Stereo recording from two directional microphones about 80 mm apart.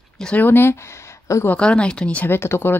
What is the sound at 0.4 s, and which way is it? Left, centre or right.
Speech, left.